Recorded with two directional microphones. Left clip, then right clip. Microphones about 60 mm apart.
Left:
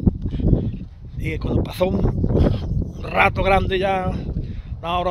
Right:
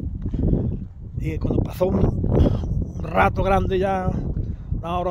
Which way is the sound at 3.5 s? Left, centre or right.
Right.